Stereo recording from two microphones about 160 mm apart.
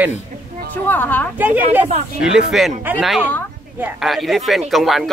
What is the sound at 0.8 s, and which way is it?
Speech, 10° left (ahead or behind).